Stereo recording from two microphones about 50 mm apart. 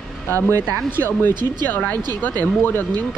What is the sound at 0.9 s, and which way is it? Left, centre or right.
Speech, left.